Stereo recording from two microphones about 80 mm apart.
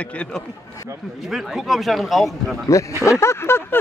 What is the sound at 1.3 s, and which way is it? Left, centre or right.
A man's voice, centre.